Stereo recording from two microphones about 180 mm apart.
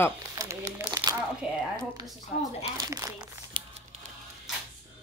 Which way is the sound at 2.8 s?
20° right (ahead or behind).